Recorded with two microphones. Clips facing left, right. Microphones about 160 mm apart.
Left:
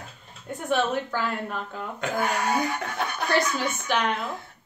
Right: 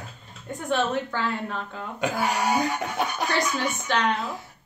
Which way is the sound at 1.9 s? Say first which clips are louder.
Right 1 dB; 15° right (ahead or behind).